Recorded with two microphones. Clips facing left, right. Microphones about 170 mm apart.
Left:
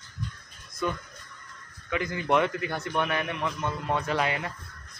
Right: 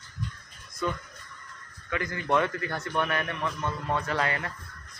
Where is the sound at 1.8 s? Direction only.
20° left (ahead or behind).